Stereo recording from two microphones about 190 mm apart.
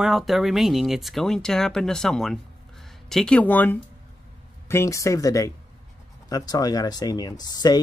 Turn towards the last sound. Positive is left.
turn(degrees=20)  # may be behind; listen again after turning